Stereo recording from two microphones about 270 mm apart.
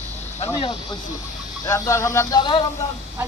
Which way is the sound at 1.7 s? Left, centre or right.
Centre.